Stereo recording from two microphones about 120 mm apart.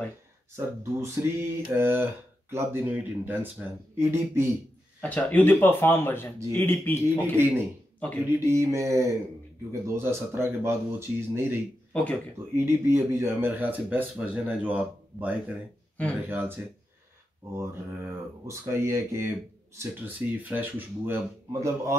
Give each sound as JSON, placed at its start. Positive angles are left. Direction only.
{"t": 0.6, "sound": "speech", "side_deg": -20}
{"t": 5.0, "sound": "speech", "side_deg": 15}
{"t": 8.5, "sound": "speech", "side_deg": -25}
{"t": 11.9, "sound": "speech", "side_deg": 10}
{"t": 12.5, "sound": "speech", "side_deg": -20}
{"t": 17.6, "sound": "speech", "side_deg": -20}
{"t": 21.5, "sound": "speech", "side_deg": -25}